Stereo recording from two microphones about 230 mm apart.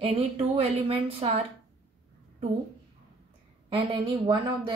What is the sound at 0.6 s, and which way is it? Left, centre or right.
Speech, right.